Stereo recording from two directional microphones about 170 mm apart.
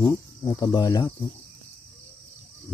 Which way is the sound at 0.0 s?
20° left (ahead or behind).